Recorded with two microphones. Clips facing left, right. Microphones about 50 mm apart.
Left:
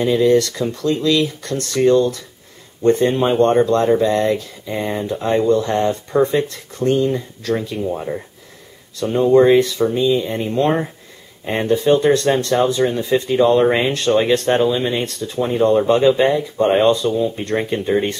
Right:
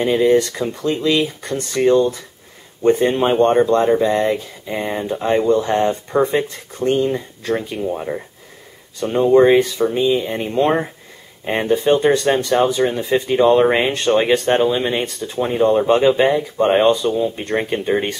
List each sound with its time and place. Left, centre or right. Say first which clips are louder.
0.1 s speech: even; right
9.5 s speech: even; right
15.1 s speech: even; centre
15.9 s speech: even; right